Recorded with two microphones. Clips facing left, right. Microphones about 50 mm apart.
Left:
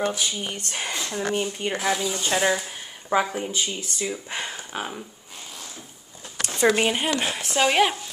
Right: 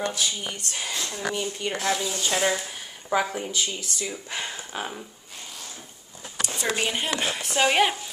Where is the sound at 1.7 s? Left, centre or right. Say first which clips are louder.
Left 1 dB; centre.